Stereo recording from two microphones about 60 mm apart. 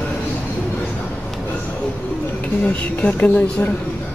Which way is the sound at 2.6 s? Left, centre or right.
Left.